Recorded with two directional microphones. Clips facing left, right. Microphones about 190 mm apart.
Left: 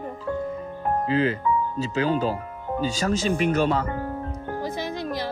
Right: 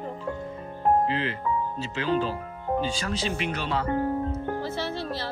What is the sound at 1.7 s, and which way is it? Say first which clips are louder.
Speech: left 3 dB; 40° left (ahead or behind).